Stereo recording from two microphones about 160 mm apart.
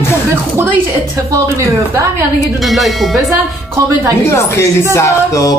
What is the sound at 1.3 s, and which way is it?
Speech, 20° right (ahead or behind).